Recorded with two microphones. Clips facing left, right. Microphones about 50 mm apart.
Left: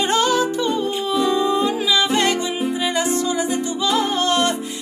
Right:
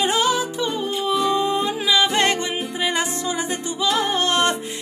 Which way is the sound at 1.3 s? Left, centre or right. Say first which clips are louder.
Left 2 dB; right.